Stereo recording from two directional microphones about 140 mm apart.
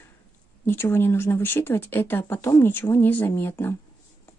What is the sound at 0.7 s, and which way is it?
Speech, 15° left (ahead or behind).